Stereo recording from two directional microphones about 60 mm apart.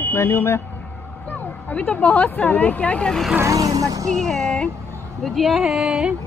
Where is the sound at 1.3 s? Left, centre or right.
Left.